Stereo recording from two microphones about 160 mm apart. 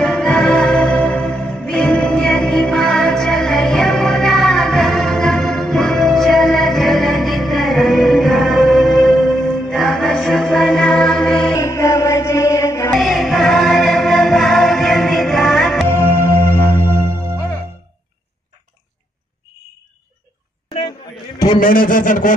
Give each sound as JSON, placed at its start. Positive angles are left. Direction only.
{"t": 0.0, "sound": "music", "side_deg": 5}
{"t": 11.5, "sound": "music", "side_deg": 20}
{"t": 12.9, "sound": "music", "side_deg": 0}
{"t": 15.9, "sound": "music", "side_deg": 15}
{"t": 21.5, "sound": "a sound", "side_deg": 60}